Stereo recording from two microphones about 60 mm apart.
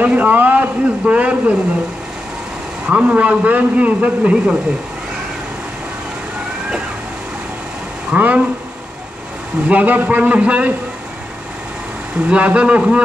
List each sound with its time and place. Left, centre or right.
0.0 s a man's voice: right
2.9 s a man's voice: right
8.1 s a man's voice: right
9.7 s a man's voice: right
12.3 s a man's voice: centre